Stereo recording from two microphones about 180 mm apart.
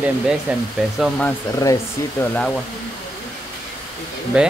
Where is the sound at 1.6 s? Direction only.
20° left (ahead or behind).